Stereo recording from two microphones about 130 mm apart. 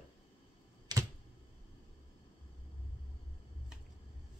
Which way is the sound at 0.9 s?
30° right (ahead or behind).